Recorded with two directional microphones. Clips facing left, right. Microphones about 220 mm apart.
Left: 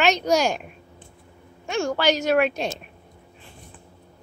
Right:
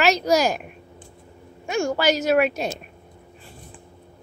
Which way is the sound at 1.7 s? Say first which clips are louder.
Right 1 dB; 10° right (ahead or behind).